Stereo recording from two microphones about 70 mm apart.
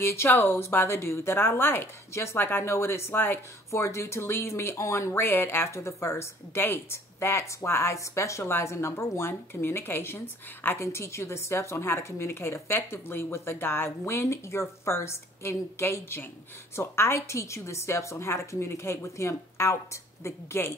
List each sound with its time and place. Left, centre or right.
0.0 s speech: left
3.7 s speech: left